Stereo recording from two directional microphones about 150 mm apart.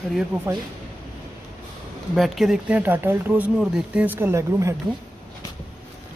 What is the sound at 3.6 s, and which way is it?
Speech, 5° right (ahead or behind).